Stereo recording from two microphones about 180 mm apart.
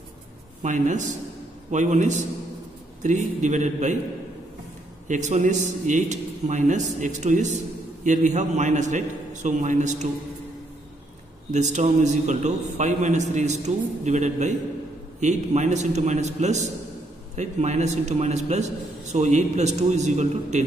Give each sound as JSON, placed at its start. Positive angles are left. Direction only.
{"t": 0.6, "sound": "a man's voice", "side_deg": -40}
{"t": 5.0, "sound": "a man's voice", "side_deg": -45}
{"t": 11.5, "sound": "a man's voice", "side_deg": -40}